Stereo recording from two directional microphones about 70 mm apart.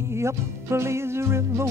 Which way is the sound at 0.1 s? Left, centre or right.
Right.